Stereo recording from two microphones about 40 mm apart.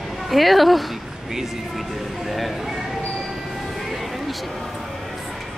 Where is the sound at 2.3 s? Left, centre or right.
Centre.